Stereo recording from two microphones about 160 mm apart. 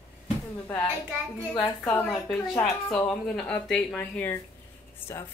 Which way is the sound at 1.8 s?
5° left (ahead or behind).